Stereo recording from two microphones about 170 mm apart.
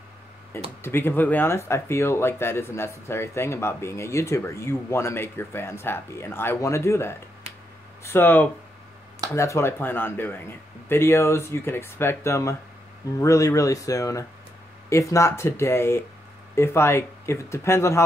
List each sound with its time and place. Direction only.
0.5 s speech: 15° left (ahead or behind)